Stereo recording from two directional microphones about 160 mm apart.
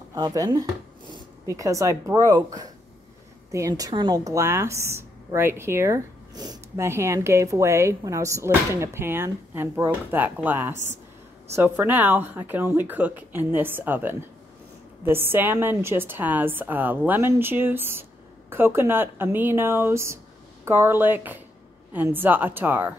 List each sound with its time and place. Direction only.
0.1 s a woman's voice: 20° right (ahead or behind)